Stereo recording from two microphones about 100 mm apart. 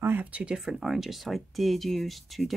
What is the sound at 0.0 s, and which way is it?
Speech, 15° right (ahead or behind).